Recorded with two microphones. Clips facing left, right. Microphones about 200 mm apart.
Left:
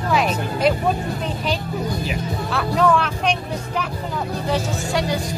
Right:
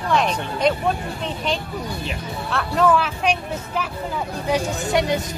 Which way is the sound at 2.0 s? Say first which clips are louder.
Left 3 dB; centre (ahead or behind).